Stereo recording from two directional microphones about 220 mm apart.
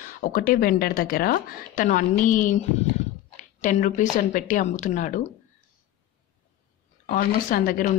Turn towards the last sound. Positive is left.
turn(degrees=40)  # may be behind; listen again after turning